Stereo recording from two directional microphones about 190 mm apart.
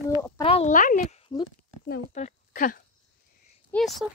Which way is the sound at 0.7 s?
40° left (ahead or behind).